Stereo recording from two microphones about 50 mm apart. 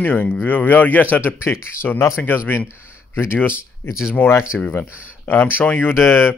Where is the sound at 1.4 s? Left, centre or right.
Left.